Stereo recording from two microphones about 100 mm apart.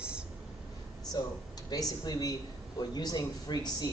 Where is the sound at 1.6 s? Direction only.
40° left (ahead or behind).